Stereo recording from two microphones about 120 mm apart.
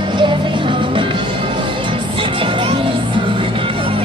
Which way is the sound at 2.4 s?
45° right (ahead or behind).